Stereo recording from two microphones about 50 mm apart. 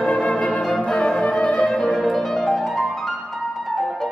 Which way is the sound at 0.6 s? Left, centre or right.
Centre.